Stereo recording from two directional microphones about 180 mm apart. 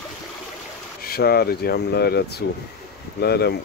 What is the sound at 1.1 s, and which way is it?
Speech, 60° left (ahead or behind).